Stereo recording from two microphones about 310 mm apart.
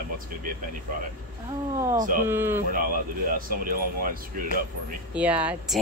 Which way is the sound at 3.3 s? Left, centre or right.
Right.